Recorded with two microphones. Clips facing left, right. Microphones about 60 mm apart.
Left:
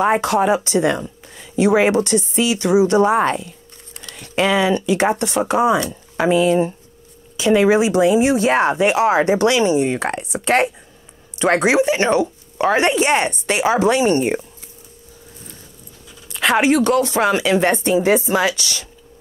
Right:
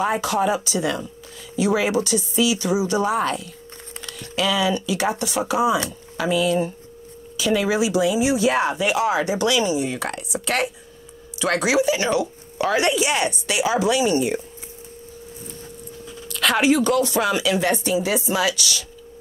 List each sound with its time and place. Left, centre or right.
0.0 s speech: left
5.9 s speech: left
16.3 s speech: left